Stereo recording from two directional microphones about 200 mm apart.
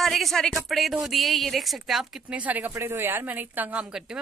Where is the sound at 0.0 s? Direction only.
Centre (ahead or behind).